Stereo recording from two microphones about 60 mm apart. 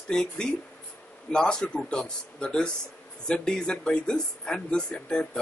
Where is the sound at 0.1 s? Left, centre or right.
Centre.